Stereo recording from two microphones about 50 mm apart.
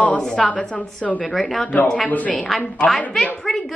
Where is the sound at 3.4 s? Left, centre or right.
Centre.